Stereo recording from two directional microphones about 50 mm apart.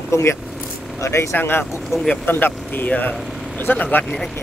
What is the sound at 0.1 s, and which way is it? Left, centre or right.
Speech, left.